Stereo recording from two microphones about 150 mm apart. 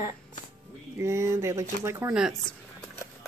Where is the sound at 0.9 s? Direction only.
20° right (ahead or behind).